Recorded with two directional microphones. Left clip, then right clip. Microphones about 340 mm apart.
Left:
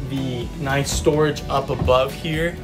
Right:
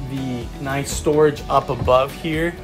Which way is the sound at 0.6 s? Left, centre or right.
Centre.